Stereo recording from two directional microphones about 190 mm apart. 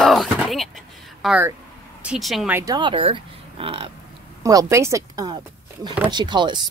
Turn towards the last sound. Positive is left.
turn(degrees=-25)  # may be behind; listen again after turning